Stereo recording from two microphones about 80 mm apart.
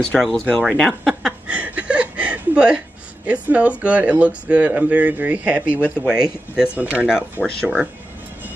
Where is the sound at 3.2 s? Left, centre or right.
Centre.